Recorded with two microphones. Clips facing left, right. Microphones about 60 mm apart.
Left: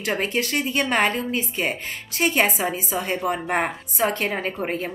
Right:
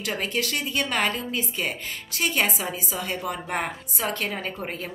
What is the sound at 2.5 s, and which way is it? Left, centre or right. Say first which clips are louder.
A woman's voice: left 5 dB; left.